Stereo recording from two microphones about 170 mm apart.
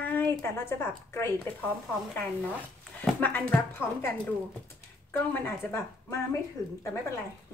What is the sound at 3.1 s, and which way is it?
Speech, 10° left (ahead or behind).